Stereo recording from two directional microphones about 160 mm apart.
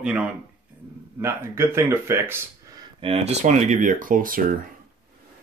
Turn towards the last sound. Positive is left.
turn(degrees=-60)  # may be behind; listen again after turning